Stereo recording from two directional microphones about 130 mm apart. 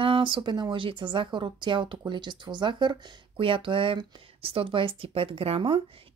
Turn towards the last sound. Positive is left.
turn(degrees=-45)  # may be behind; listen again after turning